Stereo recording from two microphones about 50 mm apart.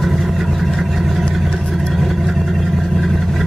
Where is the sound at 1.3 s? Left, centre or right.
Centre.